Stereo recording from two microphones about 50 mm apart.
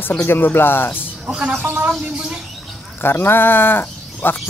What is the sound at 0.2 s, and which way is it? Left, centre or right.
Speech, left.